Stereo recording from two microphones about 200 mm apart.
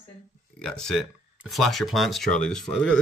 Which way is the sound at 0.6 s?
5° left (ahead or behind).